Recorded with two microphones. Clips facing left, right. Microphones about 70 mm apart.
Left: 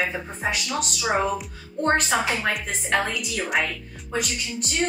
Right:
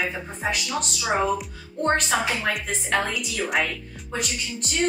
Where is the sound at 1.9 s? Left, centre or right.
Centre.